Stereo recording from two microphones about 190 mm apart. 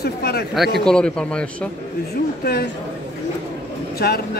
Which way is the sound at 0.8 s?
5° left (ahead or behind).